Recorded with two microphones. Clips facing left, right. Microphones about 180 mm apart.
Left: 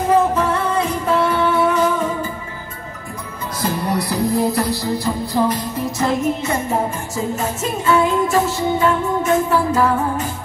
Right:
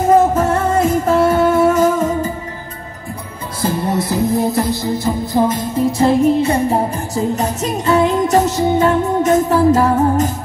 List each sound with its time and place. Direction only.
0.0 s music: 45° right (ahead or behind)
3.6 s music: 25° right (ahead or behind); by 10.3 s 40° right (ahead or behind)